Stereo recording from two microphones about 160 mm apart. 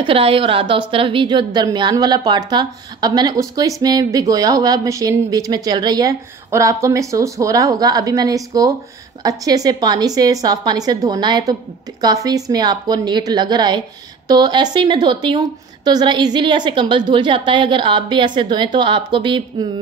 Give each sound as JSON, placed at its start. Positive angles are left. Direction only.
{"t": 0.0, "sound": "a woman's voice", "side_deg": -35}